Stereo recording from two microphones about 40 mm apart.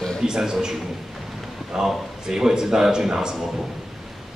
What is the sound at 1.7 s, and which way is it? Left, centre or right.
A man's voice, centre.